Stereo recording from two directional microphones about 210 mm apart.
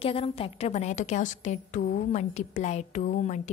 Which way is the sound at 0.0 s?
25° left (ahead or behind).